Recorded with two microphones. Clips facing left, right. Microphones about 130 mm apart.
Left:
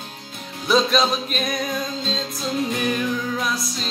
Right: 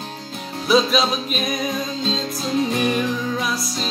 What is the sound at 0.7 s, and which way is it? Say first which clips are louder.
Music: right 1 dB; centre (ahead or behind).